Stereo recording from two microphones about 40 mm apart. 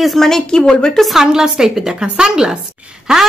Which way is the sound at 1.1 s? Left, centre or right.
Centre.